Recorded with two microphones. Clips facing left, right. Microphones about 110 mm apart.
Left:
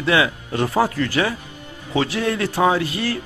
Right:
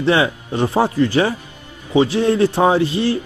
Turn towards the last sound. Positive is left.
turn(degrees=-25)  # may be behind; listen again after turning